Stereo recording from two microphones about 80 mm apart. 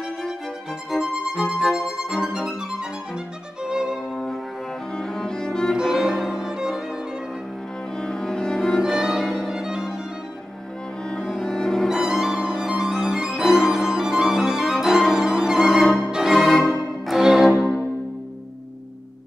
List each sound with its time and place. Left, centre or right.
0.8 s music: centre
3.6 s violin: centre
4.9 s cello: centre
5.8 s music: centre
8.0 s violin: centre
11.2 s violin: centre
16.1 s music: centre